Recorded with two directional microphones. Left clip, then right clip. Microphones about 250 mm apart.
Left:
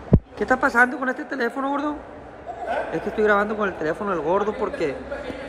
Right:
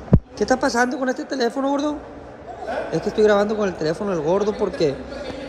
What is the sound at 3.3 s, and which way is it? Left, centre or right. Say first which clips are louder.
Speech: right 2 dB; centre.